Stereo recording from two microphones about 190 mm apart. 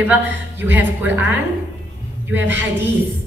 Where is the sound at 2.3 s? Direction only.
10° right (ahead or behind).